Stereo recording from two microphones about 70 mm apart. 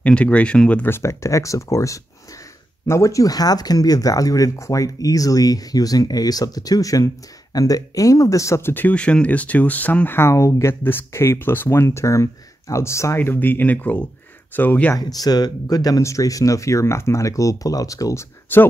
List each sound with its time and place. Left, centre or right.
0.0 s speech: centre
0.8 s speech: left
8.8 s speech: centre; by 10.3 s left
10.3 s speech: left
10.8 s speech: left
13.2 s speech: left
15.1 s speech: left
16.0 s speech: left
18.5 s speech: left